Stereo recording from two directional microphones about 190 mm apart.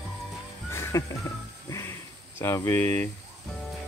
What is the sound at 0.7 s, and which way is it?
Music, 15° left (ahead or behind).